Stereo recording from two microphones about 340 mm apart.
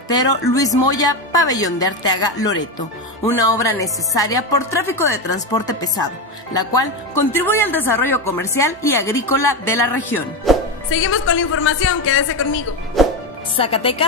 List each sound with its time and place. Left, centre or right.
0.1 s speech: centre
3.3 s speech: centre
10.9 s a woman's voice: left
13.0 s music: centre
13.6 s speech: centre